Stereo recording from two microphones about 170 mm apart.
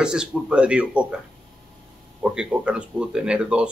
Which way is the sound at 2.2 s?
5° right (ahead or behind).